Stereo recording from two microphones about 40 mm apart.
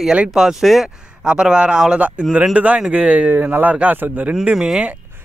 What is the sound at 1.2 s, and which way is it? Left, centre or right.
Speech, right.